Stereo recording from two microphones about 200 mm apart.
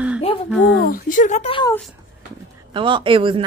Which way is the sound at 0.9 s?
40° left (ahead or behind).